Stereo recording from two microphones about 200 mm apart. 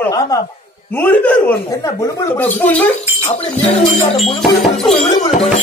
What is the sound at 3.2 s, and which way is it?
Music, 35° left (ahead or behind).